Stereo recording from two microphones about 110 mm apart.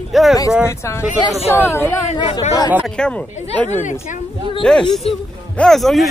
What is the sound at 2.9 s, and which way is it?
A man's voice, 10° left (ahead or behind).